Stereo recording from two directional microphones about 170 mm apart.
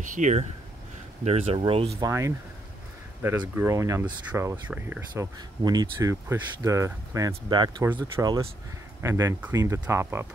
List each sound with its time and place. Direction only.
0.0 s speech: 45° right (ahead or behind)
2.0 s speech: 20° right (ahead or behind)